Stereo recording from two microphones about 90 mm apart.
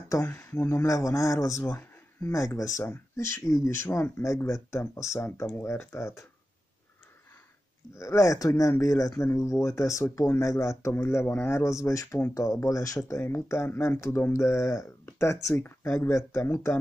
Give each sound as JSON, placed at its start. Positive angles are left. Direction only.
{"t": 0.1, "sound": "speech", "side_deg": 30}
{"t": 8.0, "sound": "speech", "side_deg": 35}